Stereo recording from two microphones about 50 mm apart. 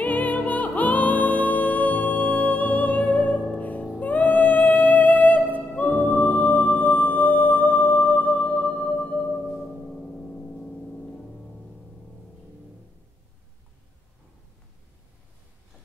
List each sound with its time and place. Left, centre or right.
0.0 s music: left
9.5 s music: centre
10.2 s vehicle: centre